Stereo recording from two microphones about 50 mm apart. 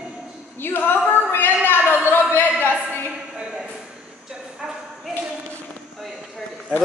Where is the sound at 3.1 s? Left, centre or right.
Centre.